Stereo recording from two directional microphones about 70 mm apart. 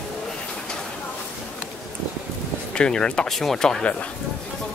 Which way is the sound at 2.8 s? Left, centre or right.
Centre.